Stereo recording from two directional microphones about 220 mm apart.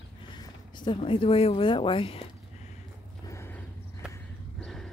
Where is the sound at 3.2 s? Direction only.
10° left (ahead or behind).